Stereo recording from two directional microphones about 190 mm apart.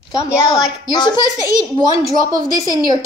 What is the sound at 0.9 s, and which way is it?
Speech, 25° left (ahead or behind).